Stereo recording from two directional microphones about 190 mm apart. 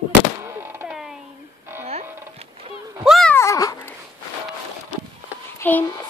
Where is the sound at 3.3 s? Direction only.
15° left (ahead or behind).